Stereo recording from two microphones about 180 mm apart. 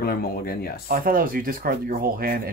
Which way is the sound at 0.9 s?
50° right (ahead or behind).